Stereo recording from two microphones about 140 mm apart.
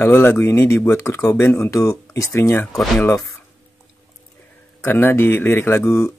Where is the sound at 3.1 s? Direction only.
25° left (ahead or behind).